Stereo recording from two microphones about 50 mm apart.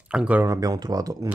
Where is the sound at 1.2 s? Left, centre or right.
Right.